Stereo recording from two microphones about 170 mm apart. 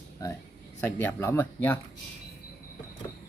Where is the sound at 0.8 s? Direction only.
15° left (ahead or behind).